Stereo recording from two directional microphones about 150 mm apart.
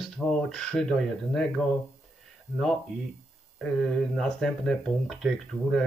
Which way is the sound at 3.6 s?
5° left (ahead or behind).